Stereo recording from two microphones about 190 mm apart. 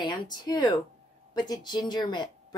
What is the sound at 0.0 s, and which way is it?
Speech, 25° left (ahead or behind).